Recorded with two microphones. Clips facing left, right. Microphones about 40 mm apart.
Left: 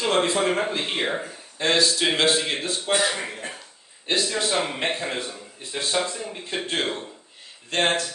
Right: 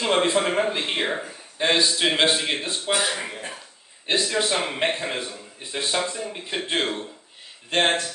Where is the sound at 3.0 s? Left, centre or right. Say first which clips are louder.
Left 1 dB; centre.